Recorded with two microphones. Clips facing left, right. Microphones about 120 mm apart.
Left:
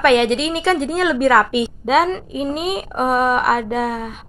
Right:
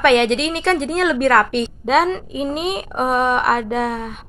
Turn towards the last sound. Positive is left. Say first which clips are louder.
# even
turn(degrees=0)  # may be behind; listen again after turning